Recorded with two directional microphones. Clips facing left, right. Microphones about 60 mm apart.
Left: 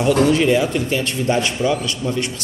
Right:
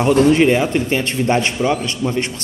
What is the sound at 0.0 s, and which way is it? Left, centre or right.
Speech, right.